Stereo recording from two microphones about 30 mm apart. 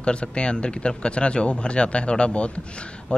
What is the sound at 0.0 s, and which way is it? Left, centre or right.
Speech, left.